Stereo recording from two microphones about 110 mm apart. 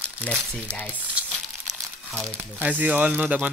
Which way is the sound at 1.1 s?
10° right (ahead or behind).